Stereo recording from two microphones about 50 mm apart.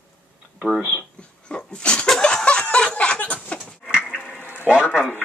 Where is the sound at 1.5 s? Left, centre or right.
Centre.